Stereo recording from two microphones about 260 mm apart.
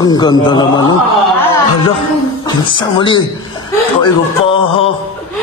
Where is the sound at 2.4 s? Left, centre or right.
Centre.